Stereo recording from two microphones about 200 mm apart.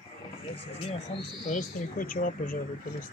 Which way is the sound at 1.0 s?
40° left (ahead or behind).